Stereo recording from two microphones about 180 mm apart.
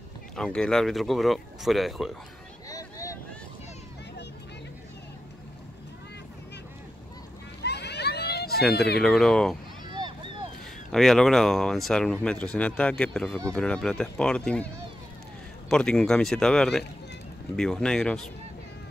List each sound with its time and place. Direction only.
0.4 s speech: 5° left (ahead or behind)
2.7 s vehicle: 15° left (ahead or behind)
7.6 s a sound: 65° left (ahead or behind)
8.7 s speech: 65° left (ahead or behind)
9.0 s speech: 5° left (ahead or behind)
9.8 s vehicle: 25° right (ahead or behind)
10.9 s speech: centre (ahead or behind)
15.7 s speech: 5° left (ahead or behind)